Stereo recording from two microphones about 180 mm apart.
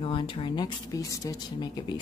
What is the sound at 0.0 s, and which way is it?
A woman's voice, 30° left (ahead or behind).